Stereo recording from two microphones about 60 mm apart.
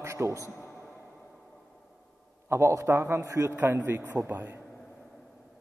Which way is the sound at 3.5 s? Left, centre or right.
Right.